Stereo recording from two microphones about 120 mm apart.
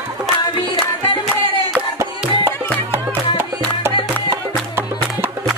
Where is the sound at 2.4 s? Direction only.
20° right (ahead or behind).